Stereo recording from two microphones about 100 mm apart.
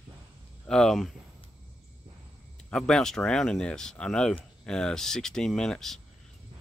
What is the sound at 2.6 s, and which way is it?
Speech, 5° left (ahead or behind).